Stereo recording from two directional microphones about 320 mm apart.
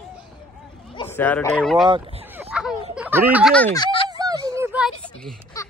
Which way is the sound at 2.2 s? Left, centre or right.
Centre.